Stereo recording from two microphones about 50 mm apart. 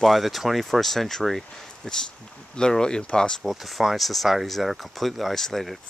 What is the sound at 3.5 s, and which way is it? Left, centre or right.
Speech, centre.